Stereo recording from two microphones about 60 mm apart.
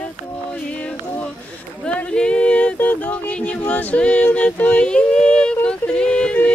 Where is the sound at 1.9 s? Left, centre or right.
Centre.